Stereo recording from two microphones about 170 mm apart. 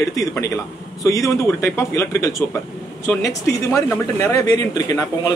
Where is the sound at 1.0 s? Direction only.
20° left (ahead or behind).